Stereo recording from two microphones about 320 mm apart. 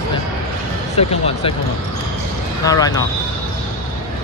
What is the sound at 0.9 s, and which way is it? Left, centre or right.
Speech, centre.